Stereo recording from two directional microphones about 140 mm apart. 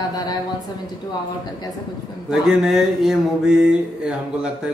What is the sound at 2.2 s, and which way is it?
Mantra, 5° right (ahead or behind).